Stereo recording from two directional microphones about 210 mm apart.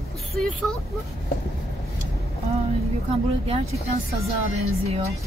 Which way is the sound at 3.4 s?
30° right (ahead or behind).